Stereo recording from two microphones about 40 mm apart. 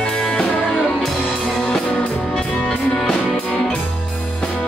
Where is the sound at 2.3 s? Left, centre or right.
Centre.